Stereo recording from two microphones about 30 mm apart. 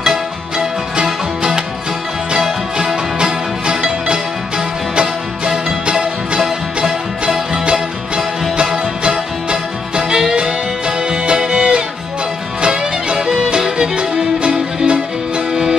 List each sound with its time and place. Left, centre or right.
0.0 s music: centre
3.2 s music: right
5.9 s music: right
9.0 s music: right
10.0 s music: centre